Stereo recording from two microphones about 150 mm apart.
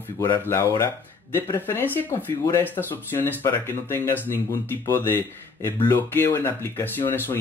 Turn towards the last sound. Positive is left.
turn(degrees=15)  # may be behind; listen again after turning